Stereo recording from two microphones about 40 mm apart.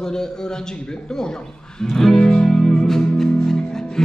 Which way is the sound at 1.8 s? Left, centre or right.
Centre.